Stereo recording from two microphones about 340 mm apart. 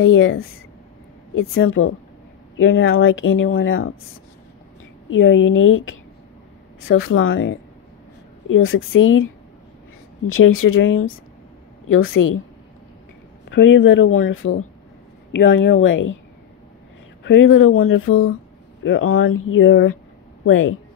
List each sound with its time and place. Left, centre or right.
0.0 s speech: left
5.1 s speech: left
8.5 s speech: left
13.5 s speech: left
17.2 s speech: left